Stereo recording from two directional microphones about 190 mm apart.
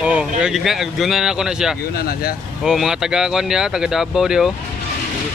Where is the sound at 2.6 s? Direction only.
Centre (ahead or behind).